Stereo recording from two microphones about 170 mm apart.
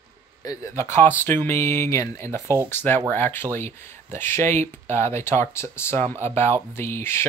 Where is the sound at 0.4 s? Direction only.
20° left (ahead or behind).